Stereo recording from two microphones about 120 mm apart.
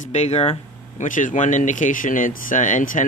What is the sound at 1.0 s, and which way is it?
Speech, 90° left.